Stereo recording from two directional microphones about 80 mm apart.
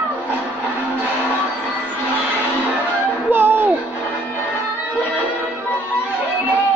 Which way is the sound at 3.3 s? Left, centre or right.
Right.